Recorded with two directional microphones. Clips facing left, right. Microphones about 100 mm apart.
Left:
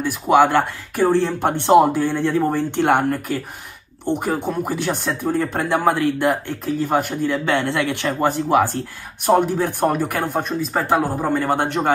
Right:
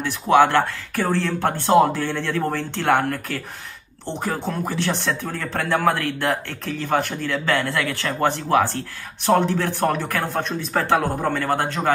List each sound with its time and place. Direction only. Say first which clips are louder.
0.0 s speech: left 1 dB; 15° left (ahead or behind)